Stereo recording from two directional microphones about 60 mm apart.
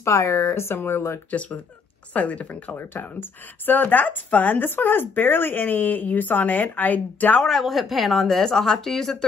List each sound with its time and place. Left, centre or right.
0.0 s speech: left
1.3 s speech: left
2.8 s speech: left
7.4 s speech: centre